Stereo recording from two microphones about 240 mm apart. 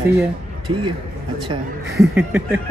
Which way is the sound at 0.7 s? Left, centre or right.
Right.